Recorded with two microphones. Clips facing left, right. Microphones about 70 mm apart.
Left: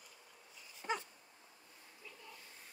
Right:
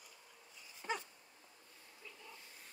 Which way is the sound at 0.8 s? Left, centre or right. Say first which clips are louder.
Left 2 dB; centre.